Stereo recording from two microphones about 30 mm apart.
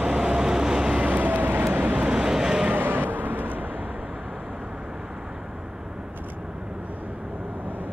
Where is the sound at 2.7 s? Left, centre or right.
Right.